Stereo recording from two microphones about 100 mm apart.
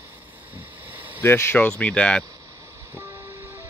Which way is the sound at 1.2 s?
25° left (ahead or behind).